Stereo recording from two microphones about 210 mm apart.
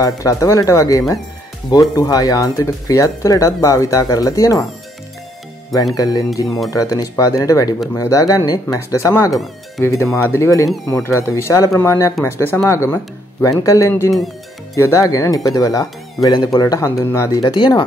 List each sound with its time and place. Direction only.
0.0 s speech: 15° left (ahead or behind)
5.9 s speech: 15° left (ahead or behind)